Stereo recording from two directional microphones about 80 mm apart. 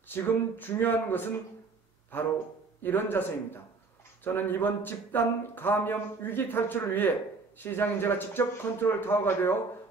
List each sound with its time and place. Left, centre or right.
0.1 s speech: left
2.8 s speech: left